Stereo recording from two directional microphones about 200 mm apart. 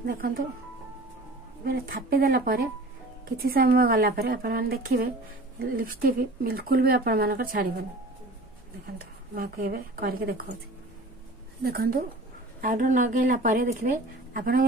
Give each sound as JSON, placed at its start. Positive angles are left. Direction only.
{"t": 1.6, "sound": "speech", "side_deg": -50}
{"t": 8.9, "sound": "speech", "side_deg": -45}
{"t": 11.6, "sound": "speech", "side_deg": -50}